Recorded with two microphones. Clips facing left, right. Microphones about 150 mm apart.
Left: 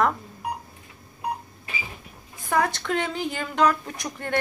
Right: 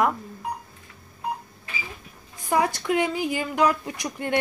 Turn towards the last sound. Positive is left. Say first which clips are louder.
# right 3 dB
turn(degrees=-15)  # may be behind; listen again after turning